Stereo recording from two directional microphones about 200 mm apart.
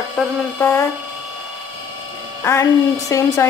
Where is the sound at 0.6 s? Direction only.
10° left (ahead or behind).